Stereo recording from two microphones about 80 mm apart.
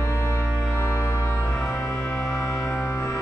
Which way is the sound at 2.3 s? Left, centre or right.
Left.